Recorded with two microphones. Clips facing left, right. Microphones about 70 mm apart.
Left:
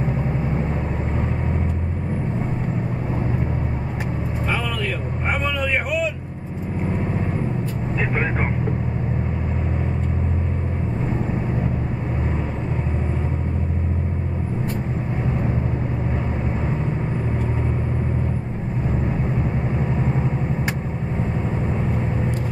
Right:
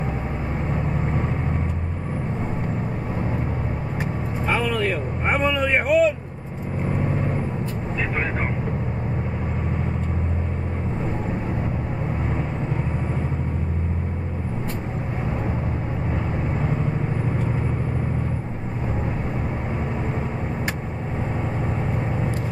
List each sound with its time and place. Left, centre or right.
5.3 s vehicle: right